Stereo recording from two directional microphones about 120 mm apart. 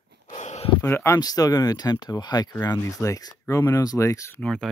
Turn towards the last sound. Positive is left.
turn(degrees=5)  # may be behind; listen again after turning